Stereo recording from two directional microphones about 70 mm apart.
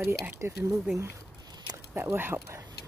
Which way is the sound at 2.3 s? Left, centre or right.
Right.